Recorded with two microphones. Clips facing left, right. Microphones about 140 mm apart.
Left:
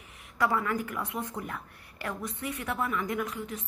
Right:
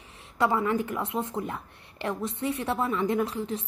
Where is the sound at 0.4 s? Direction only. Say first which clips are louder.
Right 3 dB; 25° right (ahead or behind).